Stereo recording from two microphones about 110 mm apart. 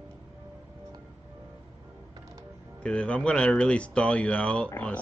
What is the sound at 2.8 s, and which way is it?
Speech, 10° left (ahead or behind).